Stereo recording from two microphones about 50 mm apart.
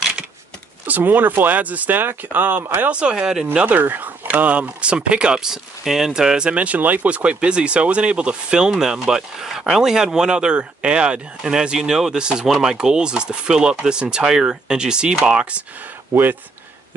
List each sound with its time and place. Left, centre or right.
0.8 s speech: right
1.6 s speech: right
3.0 s speech: centre
3.6 s speech: right; by 15.1 s centre
16.1 s speech: right